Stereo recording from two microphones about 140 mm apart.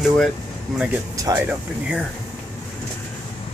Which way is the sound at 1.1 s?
25° right (ahead or behind).